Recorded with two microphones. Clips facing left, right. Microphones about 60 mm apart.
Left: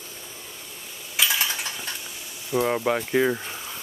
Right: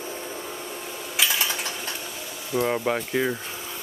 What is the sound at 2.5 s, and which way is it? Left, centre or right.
Speech, centre.